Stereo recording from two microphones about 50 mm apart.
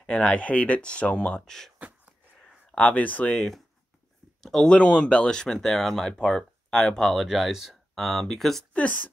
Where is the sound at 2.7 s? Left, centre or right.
Left.